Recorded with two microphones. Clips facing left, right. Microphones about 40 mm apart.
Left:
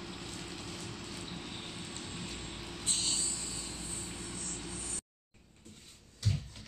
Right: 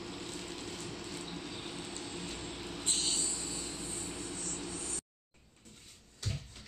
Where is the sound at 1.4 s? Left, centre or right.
Left.